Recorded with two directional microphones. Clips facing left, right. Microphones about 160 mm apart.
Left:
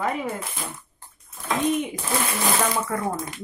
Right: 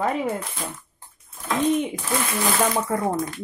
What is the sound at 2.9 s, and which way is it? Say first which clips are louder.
Speech: right 3 dB; 30° right (ahead or behind).